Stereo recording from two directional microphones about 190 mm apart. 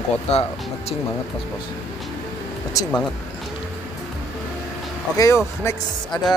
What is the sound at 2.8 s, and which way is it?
Speech, 20° left (ahead or behind).